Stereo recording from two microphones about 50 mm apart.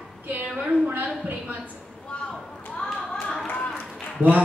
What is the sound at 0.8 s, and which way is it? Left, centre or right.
Speech, right.